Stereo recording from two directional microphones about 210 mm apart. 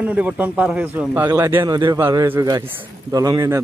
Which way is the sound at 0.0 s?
5° right (ahead or behind).